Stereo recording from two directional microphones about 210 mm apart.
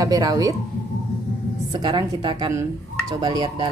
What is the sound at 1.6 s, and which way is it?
A woman's voice, 20° right (ahead or behind).